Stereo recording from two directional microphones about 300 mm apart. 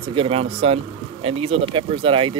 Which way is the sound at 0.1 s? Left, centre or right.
Centre.